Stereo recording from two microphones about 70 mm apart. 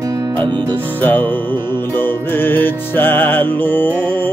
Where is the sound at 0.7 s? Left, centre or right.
Left.